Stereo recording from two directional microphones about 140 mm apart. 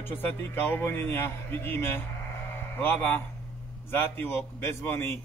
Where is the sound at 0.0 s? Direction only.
15° left (ahead or behind).